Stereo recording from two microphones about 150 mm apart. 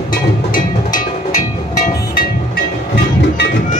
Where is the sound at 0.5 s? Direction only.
60° left (ahead or behind).